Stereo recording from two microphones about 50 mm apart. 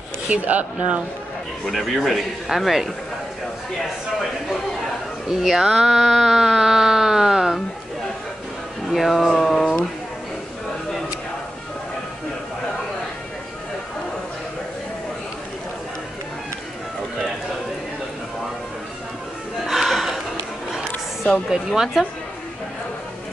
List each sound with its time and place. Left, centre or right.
0.3 s speech: right
1.7 s speech: centre
5.3 s a sound: centre
8.8 s speech: centre
19.6 s a sound: centre
21.5 s a woman's voice: centre